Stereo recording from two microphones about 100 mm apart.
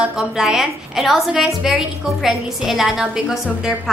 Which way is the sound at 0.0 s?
5° right (ahead or behind).